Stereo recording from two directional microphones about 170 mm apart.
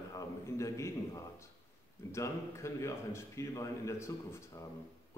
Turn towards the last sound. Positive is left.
turn(degrees=15)  # may be behind; listen again after turning